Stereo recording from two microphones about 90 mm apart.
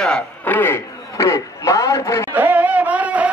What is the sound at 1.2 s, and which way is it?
A man's voice, 35° left (ahead or behind).